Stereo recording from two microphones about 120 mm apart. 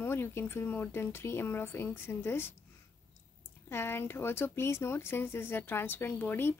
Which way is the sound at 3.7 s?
20° left (ahead or behind).